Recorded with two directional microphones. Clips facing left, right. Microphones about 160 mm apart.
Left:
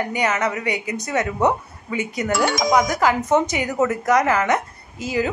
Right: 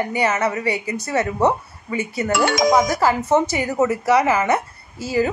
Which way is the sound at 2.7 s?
5° right (ahead or behind).